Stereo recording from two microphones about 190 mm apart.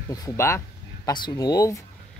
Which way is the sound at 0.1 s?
15° left (ahead or behind).